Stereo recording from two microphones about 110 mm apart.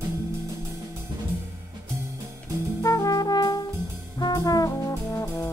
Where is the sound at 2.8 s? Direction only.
35° left (ahead or behind).